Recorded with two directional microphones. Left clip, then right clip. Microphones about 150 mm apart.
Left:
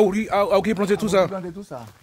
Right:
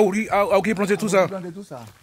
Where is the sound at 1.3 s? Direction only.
40° right (ahead or behind).